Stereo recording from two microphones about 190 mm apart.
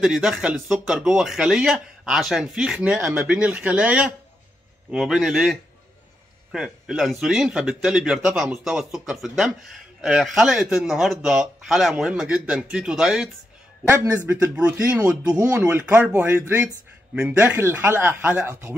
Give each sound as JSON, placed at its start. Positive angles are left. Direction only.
{"t": 0.0, "sound": "a man's voice", "side_deg": -5}
{"t": 15.6, "sound": "a man's voice", "side_deg": -5}